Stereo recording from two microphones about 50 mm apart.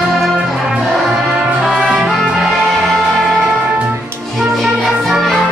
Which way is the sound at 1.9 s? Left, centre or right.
Centre.